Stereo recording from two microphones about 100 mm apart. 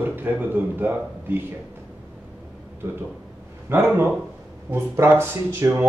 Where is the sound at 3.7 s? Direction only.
20° right (ahead or behind).